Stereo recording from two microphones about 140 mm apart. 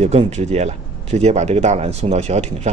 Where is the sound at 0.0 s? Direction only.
50° right (ahead or behind).